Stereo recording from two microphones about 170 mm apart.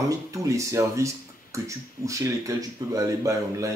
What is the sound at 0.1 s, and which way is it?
Speech, 20° right (ahead or behind).